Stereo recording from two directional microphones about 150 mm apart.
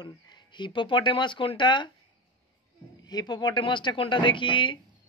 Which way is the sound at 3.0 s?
25° left (ahead or behind).